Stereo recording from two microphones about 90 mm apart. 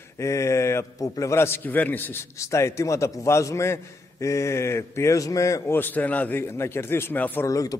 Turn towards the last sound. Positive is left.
turn(degrees=40)  # may be behind; listen again after turning